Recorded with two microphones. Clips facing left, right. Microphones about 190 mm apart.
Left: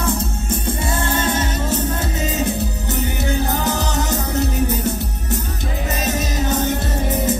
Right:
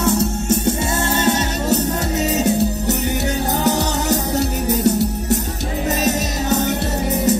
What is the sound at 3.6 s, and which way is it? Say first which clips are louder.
Music: right 3 dB; 40° right (ahead or behind).